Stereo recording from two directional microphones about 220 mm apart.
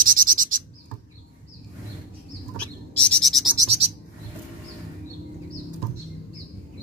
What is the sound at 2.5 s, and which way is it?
Bird, 5° left (ahead or behind).